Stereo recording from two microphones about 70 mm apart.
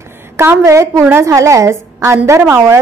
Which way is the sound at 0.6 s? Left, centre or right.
Right.